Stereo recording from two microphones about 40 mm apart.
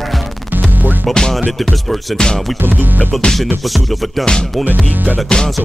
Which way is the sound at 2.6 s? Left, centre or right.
Right.